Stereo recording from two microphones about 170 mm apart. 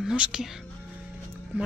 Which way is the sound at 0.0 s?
5° right (ahead or behind).